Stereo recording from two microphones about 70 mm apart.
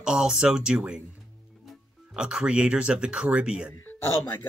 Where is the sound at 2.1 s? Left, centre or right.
Centre.